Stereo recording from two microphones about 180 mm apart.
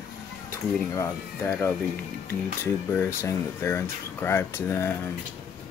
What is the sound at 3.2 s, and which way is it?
Speech, 15° left (ahead or behind).